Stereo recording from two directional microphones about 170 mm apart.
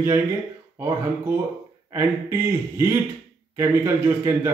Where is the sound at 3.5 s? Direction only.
15° right (ahead or behind).